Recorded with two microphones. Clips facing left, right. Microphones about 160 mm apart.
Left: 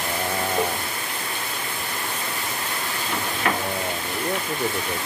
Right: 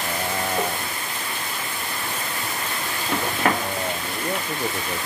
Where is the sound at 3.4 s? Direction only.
45° right (ahead or behind).